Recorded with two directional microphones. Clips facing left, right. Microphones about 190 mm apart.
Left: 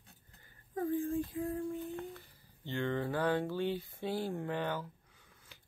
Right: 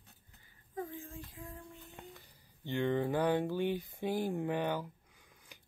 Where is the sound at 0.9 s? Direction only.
50° left (ahead or behind).